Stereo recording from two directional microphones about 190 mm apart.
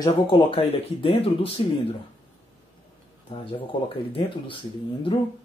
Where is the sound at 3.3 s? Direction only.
25° left (ahead or behind).